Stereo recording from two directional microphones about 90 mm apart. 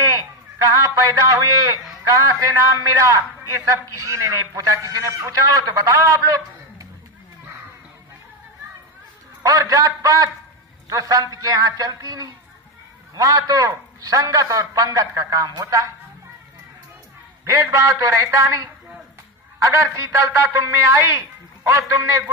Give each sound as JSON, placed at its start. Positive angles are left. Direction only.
{"t": 0.0, "sound": "a man's voice", "side_deg": -40}
{"t": 9.4, "sound": "a man's voice", "side_deg": -40}
{"t": 17.5, "sound": "a man's voice", "side_deg": -30}